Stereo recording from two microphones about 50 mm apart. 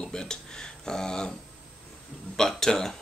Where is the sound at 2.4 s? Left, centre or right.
Centre.